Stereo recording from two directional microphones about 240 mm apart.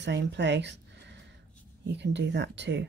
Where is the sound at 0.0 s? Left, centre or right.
Right.